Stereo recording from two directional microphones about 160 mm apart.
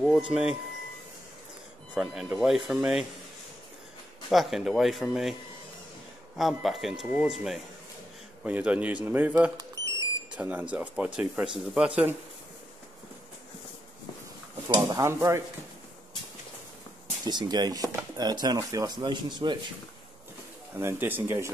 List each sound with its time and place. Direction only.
0.3 s speech: 5° right (ahead or behind)
2.0 s speech: 5° right (ahead or behind)
4.3 s speech: centre (ahead or behind)
6.3 s speech: centre (ahead or behind)
9.6 s smoke detector: 20° right (ahead or behind)
10.3 s speech: 10° right (ahead or behind)
14.7 s speech: 25° right (ahead or behind)
17.3 s speech: 25° right (ahead or behind)
20.8 s speech: 15° right (ahead or behind)